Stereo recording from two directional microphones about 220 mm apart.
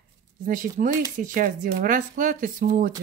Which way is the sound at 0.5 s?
35° right (ahead or behind).